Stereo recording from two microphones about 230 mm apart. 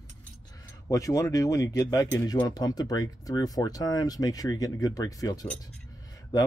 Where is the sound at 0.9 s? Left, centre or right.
Centre.